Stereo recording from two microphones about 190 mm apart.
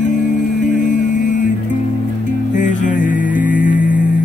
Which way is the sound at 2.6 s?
40° left (ahead or behind).